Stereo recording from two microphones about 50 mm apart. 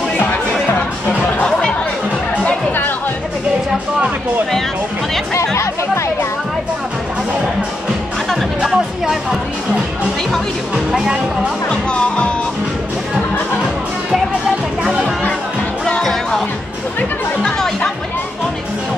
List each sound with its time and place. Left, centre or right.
1.4 s music: centre
2.3 s music: left
8.6 s music: centre
10.9 s speech: centre
11.7 s music: left
14.8 s music: right
15.8 s music: centre
17.4 s chatter: centre